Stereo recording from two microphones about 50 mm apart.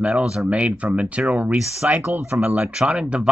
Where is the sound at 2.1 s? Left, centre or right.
Right.